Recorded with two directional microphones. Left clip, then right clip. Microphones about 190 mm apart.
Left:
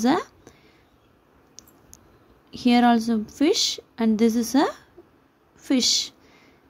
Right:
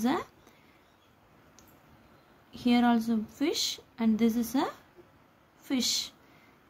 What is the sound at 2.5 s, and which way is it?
A woman's voice, 30° left (ahead or behind).